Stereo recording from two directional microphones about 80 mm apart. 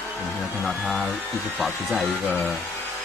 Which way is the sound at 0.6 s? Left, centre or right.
Centre.